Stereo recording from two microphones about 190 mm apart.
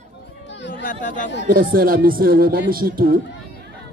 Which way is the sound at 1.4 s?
50° right (ahead or behind).